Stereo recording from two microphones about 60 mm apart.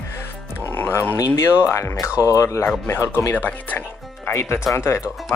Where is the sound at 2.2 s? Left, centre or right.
Left.